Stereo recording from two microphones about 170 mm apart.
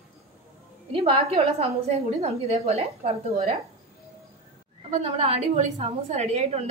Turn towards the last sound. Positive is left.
turn(degrees=-40)  # may be behind; listen again after turning